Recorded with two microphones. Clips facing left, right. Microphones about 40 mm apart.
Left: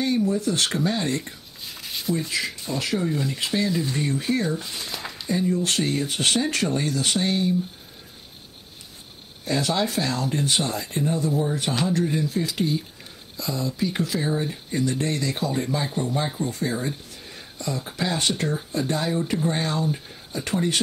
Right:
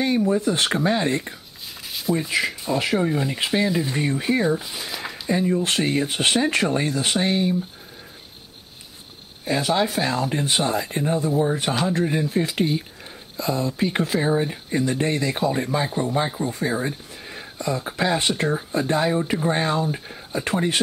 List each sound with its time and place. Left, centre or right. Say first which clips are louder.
0.0 s speech: right 2 dB; right
1.8 s a sound: right 3 dB; centre
2.1 s speech: right 4 dB; right
4.6 s a sound: right 2 dB; centre
5.3 s speech: right 2 dB; right
9.4 s speech: right 3 dB; centre